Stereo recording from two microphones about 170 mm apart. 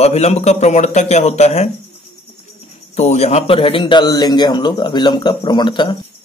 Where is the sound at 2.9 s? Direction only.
40° left (ahead or behind).